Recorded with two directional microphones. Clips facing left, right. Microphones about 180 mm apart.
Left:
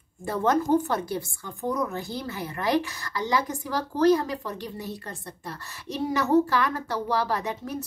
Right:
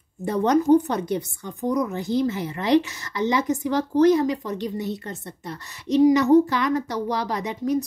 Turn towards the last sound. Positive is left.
turn(degrees=-20)  # may be behind; listen again after turning